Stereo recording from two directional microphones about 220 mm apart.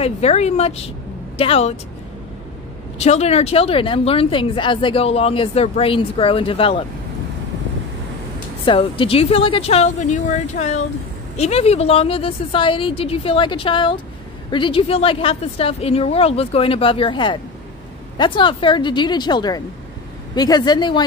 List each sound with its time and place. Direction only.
0.0 s speech: 30° left (ahead or behind)
3.0 s speech: 30° left (ahead or behind)
8.6 s speech: 25° left (ahead or behind)